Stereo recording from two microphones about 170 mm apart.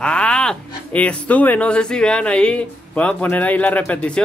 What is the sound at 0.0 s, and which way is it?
Speech, 5° left (ahead or behind).